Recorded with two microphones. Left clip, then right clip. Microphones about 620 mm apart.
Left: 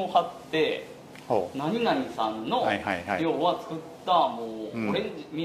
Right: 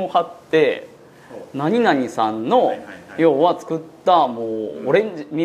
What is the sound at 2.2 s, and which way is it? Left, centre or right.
Speech, right.